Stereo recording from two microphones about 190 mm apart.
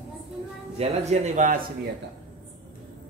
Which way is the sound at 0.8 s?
35° right (ahead or behind).